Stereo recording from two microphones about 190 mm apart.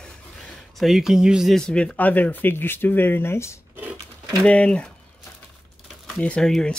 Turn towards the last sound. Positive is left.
turn(degrees=5)  # may be behind; listen again after turning